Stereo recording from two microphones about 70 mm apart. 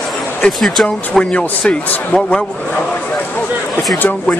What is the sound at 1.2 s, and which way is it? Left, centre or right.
A man's voice, centre.